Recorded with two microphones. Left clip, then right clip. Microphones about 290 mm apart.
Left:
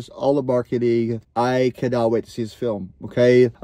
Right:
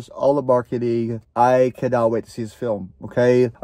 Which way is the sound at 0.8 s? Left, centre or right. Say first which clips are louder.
Left 2 dB; right.